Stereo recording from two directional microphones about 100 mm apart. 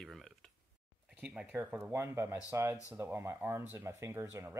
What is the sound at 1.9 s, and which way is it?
Speech, 25° right (ahead or behind).